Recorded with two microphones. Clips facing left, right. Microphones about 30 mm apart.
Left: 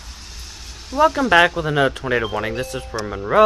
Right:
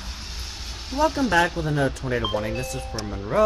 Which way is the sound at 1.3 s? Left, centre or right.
Left.